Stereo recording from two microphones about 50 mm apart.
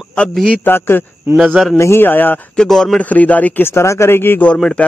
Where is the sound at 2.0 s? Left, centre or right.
Left.